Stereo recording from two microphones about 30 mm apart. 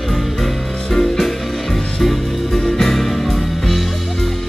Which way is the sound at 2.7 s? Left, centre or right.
Centre.